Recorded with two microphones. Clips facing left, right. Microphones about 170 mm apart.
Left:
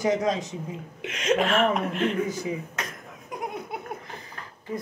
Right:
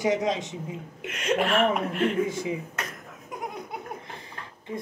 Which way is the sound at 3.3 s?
5° left (ahead or behind).